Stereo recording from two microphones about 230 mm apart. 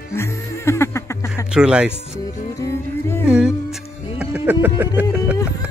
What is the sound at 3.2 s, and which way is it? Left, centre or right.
Music, centre.